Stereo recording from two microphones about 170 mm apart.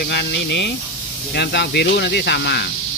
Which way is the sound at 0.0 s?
75° left (ahead or behind).